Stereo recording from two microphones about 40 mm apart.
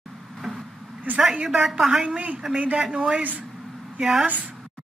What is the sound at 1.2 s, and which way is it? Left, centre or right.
Speech, centre.